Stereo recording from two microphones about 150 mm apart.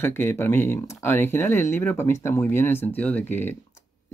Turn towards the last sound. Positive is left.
turn(degrees=15)  # may be behind; listen again after turning